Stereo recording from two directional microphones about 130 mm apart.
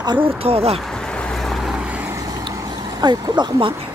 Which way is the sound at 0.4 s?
50° right (ahead or behind).